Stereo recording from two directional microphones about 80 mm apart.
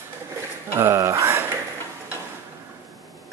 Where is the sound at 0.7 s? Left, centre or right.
Right.